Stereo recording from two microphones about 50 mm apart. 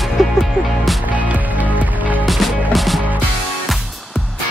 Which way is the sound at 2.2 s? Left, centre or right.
Centre.